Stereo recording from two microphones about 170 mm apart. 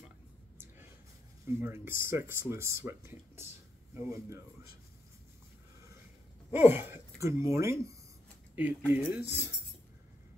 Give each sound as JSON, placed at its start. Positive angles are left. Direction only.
{"t": 1.6, "sound": "speech", "side_deg": -15}
{"t": 6.5, "sound": "speech", "side_deg": -10}